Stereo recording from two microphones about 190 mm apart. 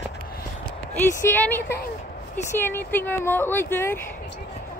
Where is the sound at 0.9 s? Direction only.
10° left (ahead or behind).